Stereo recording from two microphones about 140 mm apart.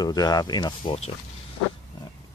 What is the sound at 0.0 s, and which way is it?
Speech, 25° left (ahead or behind).